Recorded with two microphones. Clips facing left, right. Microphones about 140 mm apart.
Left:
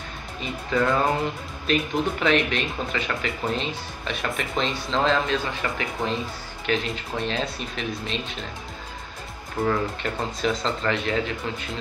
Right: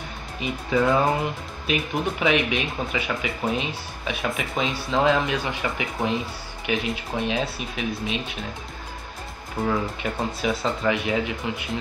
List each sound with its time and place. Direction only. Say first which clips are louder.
0.4 s speech: right 2 dB; 15° right (ahead or behind)
9.7 s speech: even; 10° right (ahead or behind)